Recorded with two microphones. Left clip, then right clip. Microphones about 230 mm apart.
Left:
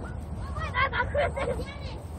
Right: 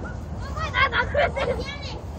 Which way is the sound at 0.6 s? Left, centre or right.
Right.